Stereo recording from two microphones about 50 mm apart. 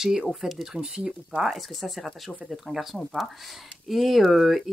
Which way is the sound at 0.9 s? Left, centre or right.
Centre.